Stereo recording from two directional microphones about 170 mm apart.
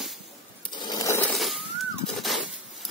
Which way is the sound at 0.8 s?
20° left (ahead or behind).